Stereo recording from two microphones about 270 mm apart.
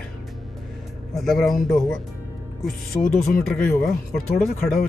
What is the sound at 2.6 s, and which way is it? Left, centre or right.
Speech, left.